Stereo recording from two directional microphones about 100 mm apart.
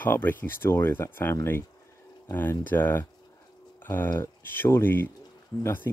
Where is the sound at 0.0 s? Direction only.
20° left (ahead or behind).